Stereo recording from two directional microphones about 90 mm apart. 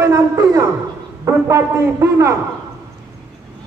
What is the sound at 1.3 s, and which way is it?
A woman's voice, 30° right (ahead or behind).